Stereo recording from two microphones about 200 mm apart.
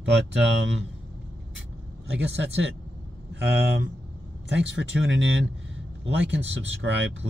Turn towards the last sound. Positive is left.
turn(degrees=-65)  # may be behind; listen again after turning